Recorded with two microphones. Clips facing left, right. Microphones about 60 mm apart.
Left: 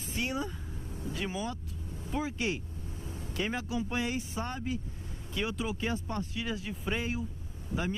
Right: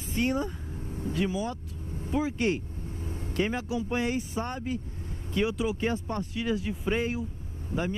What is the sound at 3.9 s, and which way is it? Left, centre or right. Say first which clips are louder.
Speech: right 4 dB; right.